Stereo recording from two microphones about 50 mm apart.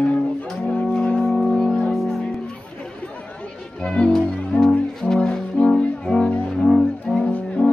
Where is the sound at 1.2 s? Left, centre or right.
Centre.